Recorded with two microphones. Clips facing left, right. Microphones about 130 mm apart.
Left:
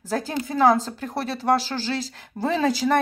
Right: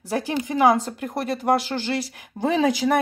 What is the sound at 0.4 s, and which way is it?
Speech, 15° right (ahead or behind).